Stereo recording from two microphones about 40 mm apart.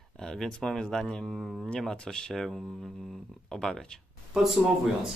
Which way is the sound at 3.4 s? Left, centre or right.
Centre.